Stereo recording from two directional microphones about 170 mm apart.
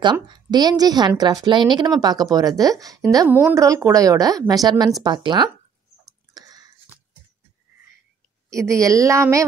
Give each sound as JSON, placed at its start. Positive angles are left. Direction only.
{"t": 0.0, "sound": "a woman's voice", "side_deg": -25}
{"t": 6.3, "sound": "a sound", "side_deg": -20}
{"t": 8.5, "sound": "a woman's voice", "side_deg": -20}